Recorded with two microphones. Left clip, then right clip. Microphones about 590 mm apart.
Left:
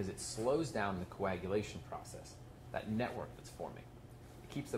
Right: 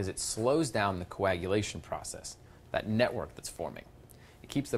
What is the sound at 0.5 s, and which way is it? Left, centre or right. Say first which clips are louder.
Speech: right 7 dB; right.